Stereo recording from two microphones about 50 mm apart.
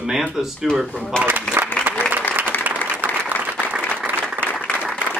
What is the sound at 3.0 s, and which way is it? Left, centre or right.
Applause, right.